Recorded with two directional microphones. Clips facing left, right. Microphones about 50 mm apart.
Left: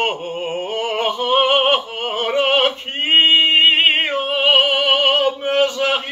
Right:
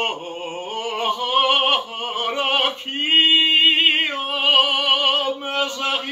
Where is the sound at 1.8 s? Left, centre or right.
Left.